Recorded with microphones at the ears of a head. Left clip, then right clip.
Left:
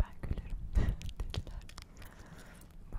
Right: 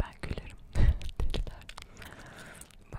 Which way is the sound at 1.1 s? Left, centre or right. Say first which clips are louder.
Right 6 dB; right.